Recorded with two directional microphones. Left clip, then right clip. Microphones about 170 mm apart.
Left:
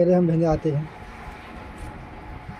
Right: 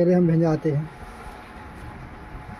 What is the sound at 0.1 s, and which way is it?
Speech, 40° right (ahead or behind).